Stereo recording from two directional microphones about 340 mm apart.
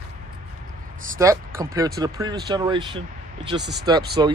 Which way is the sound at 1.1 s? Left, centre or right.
Centre.